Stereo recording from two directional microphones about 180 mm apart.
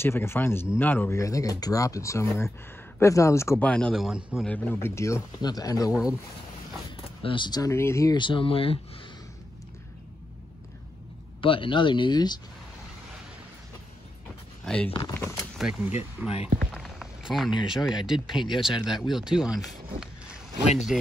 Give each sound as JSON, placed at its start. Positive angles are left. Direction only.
{"t": 0.0, "sound": "speech", "side_deg": 15}
{"t": 4.5, "sound": "speech", "side_deg": 10}
{"t": 7.2, "sound": "speech", "side_deg": 30}
{"t": 11.4, "sound": "speech", "side_deg": 30}
{"t": 14.6, "sound": "speech", "side_deg": 5}
{"t": 15.0, "sound": "speech", "side_deg": 15}
{"t": 15.5, "sound": "speech", "side_deg": -5}
{"t": 16.5, "sound": "a sound", "side_deg": 0}
{"t": 17.6, "sound": "speech", "side_deg": 0}
{"t": 20.9, "sound": "speech", "side_deg": -5}